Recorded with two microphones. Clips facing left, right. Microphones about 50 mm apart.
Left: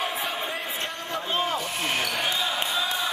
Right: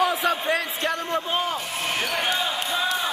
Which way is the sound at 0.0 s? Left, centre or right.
Right.